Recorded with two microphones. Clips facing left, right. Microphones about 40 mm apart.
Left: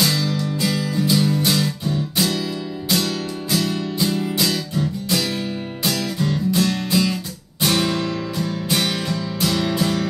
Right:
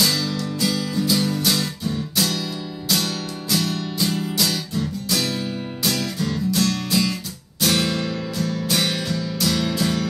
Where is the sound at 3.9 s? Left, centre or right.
Centre.